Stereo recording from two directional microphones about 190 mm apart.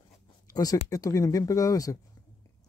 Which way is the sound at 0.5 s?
20° left (ahead or behind).